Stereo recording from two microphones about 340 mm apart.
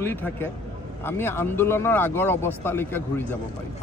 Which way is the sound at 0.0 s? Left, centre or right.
Centre.